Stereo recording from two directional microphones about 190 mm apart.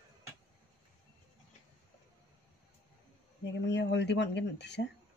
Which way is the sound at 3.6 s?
65° left (ahead or behind).